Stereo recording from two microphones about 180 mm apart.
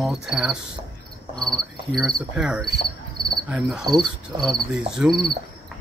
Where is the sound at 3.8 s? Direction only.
20° right (ahead or behind).